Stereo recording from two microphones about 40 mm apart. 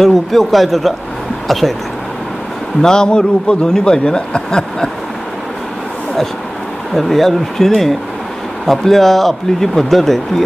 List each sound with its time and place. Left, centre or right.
0.0 s speech: centre
2.8 s a man's voice: centre
6.9 s speech: centre